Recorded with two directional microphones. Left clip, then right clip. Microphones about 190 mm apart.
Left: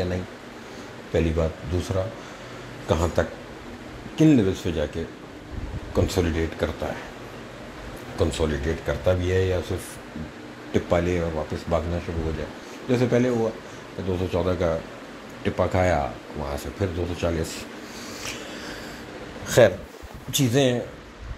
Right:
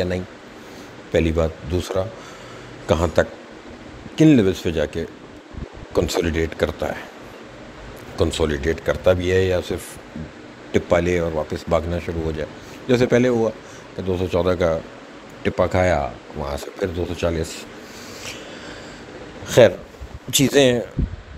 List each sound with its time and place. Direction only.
1.1 s speech: 25° right (ahead or behind)
2.9 s speech: 25° right (ahead or behind)
8.2 s a man's voice: 25° right (ahead or behind)
16.3 s speech: 25° right (ahead or behind)
19.4 s a sound: 25° right (ahead or behind)
20.2 s speech: 45° right (ahead or behind)